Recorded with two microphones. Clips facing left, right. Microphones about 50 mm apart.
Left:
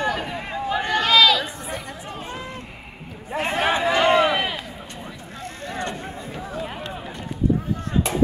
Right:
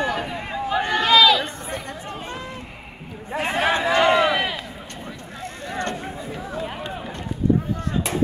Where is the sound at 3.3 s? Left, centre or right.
Centre.